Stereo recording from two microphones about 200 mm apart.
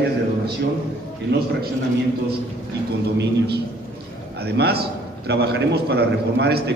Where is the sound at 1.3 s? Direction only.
55° right (ahead or behind).